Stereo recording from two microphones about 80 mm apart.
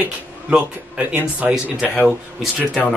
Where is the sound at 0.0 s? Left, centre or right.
Centre.